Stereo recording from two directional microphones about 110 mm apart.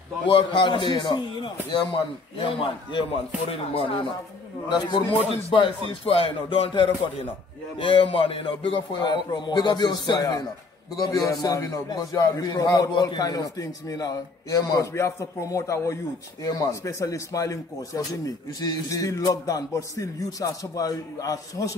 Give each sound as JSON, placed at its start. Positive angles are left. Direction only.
{"t": 0.3, "sound": "a man's voice", "side_deg": 50}
{"t": 4.6, "sound": "a man's voice", "side_deg": 45}